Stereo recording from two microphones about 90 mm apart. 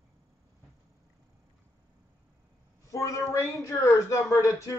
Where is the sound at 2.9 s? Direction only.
35° left (ahead or behind).